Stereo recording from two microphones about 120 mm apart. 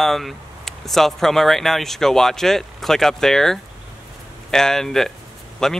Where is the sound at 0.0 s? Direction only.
Centre (ahead or behind).